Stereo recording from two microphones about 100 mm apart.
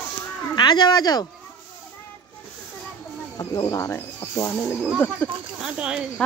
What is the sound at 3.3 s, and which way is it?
Speech, 40° left (ahead or behind).